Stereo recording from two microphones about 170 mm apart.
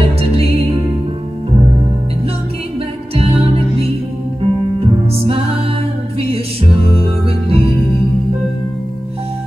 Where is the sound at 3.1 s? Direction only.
35° right (ahead or behind).